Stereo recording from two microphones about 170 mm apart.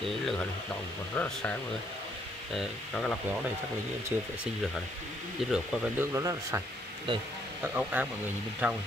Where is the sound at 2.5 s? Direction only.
5° left (ahead or behind).